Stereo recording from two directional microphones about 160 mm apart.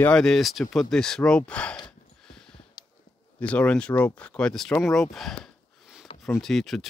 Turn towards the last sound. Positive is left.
turn(degrees=0)  # may be behind; listen again after turning